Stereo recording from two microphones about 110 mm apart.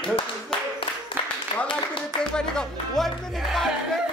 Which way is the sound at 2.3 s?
5° left (ahead or behind).